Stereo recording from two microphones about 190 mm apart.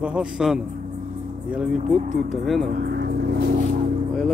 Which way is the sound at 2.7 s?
55° right (ahead or behind).